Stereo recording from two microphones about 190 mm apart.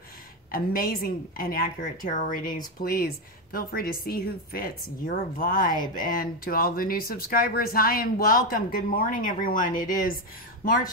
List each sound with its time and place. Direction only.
0.5 s speech: 50° left (ahead or behind)